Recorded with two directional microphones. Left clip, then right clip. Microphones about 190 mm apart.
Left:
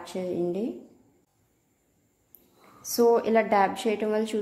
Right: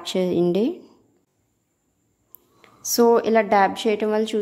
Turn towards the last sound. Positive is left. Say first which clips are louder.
# right 5 dB
turn(degrees=-30)  # may be behind; listen again after turning